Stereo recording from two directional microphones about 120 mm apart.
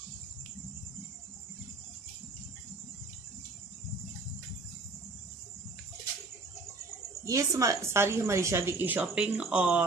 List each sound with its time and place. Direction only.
7.2 s a woman's voice: 25° right (ahead or behind); by 9.8 s 10° right (ahead or behind)